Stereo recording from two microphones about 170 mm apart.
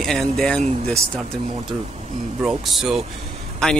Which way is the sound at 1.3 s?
40° right (ahead or behind).